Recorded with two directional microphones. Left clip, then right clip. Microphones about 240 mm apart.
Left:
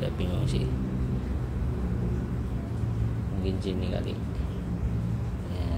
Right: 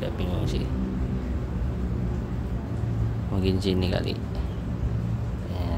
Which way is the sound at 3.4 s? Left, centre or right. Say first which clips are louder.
Right 7 dB; right.